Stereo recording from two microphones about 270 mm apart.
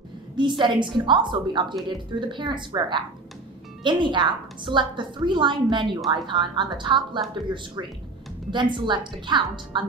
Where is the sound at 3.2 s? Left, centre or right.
Centre.